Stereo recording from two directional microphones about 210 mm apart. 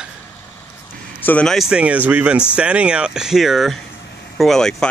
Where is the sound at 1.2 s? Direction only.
5° left (ahead or behind).